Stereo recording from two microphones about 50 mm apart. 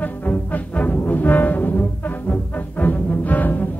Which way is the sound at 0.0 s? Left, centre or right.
Left.